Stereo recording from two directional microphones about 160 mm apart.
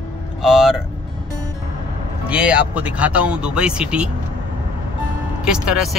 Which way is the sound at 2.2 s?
5° right (ahead or behind).